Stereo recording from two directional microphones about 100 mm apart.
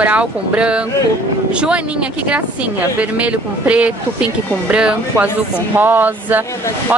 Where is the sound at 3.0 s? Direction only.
15° right (ahead or behind).